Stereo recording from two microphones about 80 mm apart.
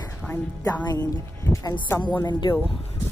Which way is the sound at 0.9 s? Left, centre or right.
Left.